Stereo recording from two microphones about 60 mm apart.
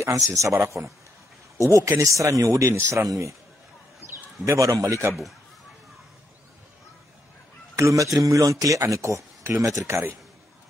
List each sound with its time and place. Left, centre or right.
0.0 s speech: right
4.0 s a sound: right
4.6 s speech: right
7.7 s a man's voice: right